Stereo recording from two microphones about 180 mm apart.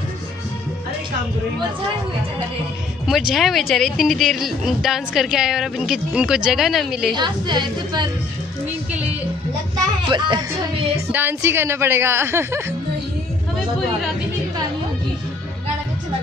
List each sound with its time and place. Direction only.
3.1 s speech: centre (ahead or behind)
7.2 s a woman's voice: 25° right (ahead or behind)
8.9 s a woman's voice: 5° right (ahead or behind)
10.0 s a woman's voice: 25° right (ahead or behind)
11.1 s speech: 10° right (ahead or behind)